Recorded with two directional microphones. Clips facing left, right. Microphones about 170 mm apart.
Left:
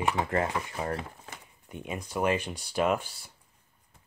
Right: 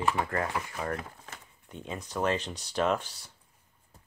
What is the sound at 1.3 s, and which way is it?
Speech, 15° left (ahead or behind).